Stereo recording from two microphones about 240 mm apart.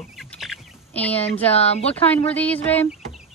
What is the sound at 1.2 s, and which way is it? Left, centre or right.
Speech, left.